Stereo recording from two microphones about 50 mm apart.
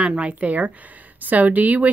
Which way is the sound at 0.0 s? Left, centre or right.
Right.